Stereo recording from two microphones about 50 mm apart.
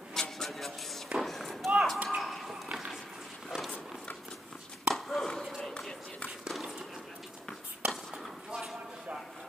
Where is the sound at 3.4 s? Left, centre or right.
Centre.